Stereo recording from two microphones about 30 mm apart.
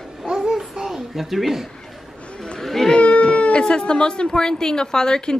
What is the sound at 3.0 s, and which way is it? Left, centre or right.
Cat, left.